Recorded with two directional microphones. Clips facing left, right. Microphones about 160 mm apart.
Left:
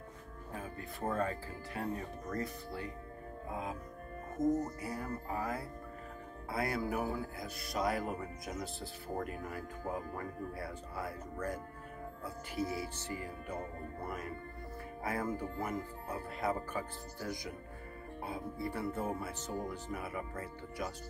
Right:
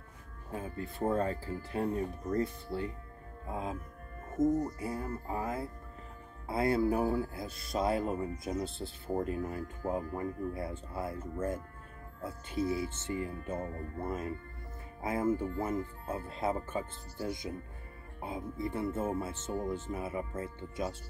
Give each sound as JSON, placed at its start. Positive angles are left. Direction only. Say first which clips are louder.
{"t": 0.5, "sound": "speech", "louder": "right 5 dB", "side_deg": -25}
{"t": 4.4, "sound": "speech", "louder": "right 3 dB", "side_deg": -50}
{"t": 4.7, "sound": "speech", "louder": "right 3 dB", "side_deg": -25}
{"t": 12.8, "sound": "speech", "louder": "right 5 dB", "side_deg": -25}